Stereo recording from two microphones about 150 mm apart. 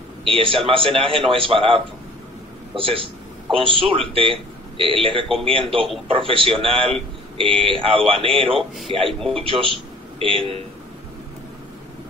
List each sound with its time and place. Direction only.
0.2 s a man's voice: 35° right (ahead or behind)